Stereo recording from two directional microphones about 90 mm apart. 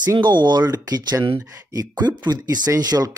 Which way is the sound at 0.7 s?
45° right (ahead or behind).